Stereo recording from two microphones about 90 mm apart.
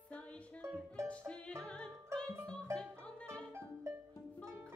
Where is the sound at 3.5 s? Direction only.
25° right (ahead or behind).